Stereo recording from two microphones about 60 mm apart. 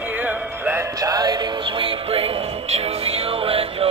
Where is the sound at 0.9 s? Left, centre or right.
Right.